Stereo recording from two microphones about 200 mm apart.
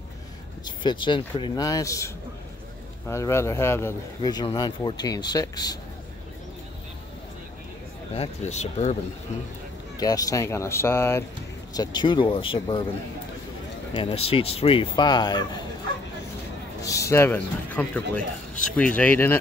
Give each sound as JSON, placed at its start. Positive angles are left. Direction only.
{"t": 0.7, "sound": "a man's voice", "side_deg": 25}
{"t": 8.1, "sound": "speech", "side_deg": 30}
{"t": 9.9, "sound": "a man's voice", "side_deg": 20}
{"t": 13.9, "sound": "a man's voice", "side_deg": 30}
{"t": 16.8, "sound": "speech", "side_deg": 15}